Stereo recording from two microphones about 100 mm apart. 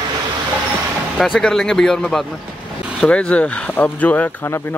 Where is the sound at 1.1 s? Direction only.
Centre (ahead or behind).